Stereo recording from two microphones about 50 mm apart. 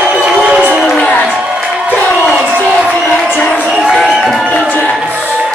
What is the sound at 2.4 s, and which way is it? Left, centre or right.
Crowd, right.